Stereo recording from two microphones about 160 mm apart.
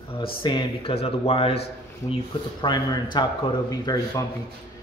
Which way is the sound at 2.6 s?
25° left (ahead or behind).